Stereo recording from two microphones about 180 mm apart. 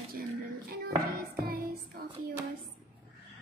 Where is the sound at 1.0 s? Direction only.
55° right (ahead or behind).